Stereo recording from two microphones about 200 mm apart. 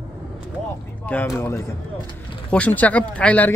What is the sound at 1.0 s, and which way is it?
Speech, 10° left (ahead or behind).